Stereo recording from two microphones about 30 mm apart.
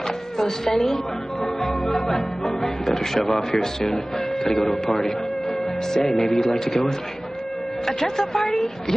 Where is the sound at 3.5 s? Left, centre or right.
Centre.